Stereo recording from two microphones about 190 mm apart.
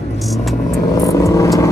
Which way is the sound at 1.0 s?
15° left (ahead or behind).